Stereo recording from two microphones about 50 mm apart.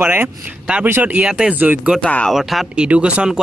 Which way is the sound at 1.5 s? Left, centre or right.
Right.